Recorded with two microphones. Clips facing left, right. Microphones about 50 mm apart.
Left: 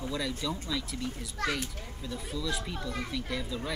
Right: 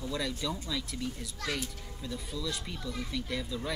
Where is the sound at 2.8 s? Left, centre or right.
Left.